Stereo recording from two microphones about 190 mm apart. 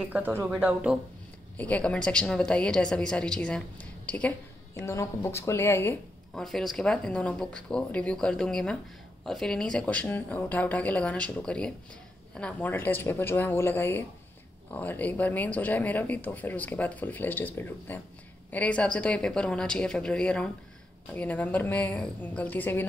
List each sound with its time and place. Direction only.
0.0 s speech: 10° right (ahead or behind)
1.6 s a woman's voice: 5° left (ahead or behind)
6.3 s a woman's voice: centre (ahead or behind)